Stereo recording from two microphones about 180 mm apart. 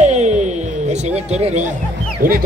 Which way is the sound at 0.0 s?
40° right (ahead or behind).